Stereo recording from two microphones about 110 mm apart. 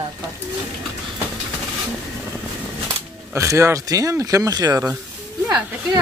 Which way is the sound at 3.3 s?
25° right (ahead or behind).